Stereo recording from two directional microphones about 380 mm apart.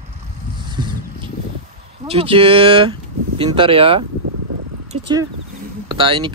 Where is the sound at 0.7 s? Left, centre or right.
Centre.